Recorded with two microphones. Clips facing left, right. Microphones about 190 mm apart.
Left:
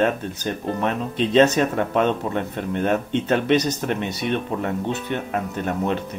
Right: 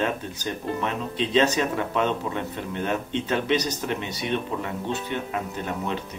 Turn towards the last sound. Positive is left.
turn(degrees=50)  # may be behind; listen again after turning